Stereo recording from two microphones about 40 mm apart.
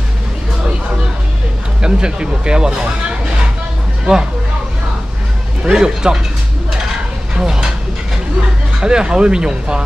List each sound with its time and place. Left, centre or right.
1.8 s speech: right
5.7 s speech: centre
7.4 s a sound: centre
8.8 s speech: centre